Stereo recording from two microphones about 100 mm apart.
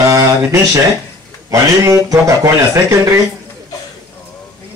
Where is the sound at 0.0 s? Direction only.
35° right (ahead or behind).